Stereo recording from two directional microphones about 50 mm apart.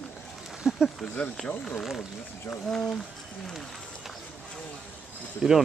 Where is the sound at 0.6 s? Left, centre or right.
Centre.